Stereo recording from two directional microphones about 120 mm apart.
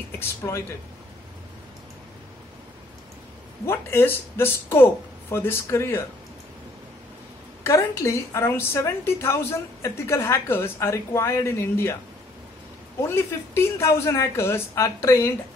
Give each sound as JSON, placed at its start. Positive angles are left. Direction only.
{"t": 0.4, "sound": "speech", "side_deg": 25}
{"t": 3.6, "sound": "a woman's voice", "side_deg": 20}
{"t": 7.6, "sound": "a woman's voice", "side_deg": 25}
{"t": 13.1, "sound": "a woman's voice", "side_deg": 20}